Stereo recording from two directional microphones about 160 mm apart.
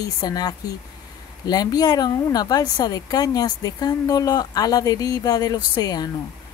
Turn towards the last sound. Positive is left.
turn(degrees=25)  # may be behind; listen again after turning